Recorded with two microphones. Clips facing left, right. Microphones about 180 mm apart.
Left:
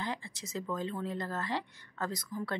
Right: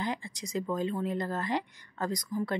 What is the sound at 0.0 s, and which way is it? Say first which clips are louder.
Speech: right 4 dB; 15° right (ahead or behind).